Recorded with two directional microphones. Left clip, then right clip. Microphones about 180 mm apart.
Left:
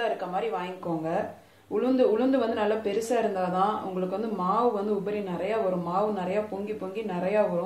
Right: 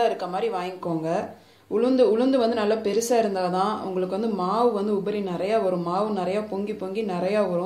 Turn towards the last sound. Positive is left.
turn(degrees=-50)  # may be behind; listen again after turning